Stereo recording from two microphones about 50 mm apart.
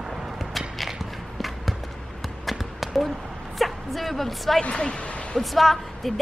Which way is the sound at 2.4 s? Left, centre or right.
Centre.